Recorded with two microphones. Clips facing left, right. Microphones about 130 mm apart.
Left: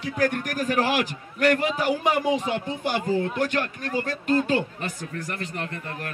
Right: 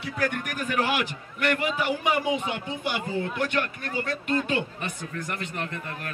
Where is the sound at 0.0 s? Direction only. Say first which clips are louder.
Left 4 dB; 35° left (ahead or behind).